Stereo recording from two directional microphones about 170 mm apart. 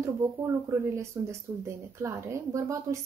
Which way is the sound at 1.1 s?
15° right (ahead or behind).